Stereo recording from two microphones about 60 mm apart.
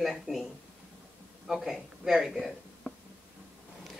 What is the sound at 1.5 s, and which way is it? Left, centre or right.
Speech, centre.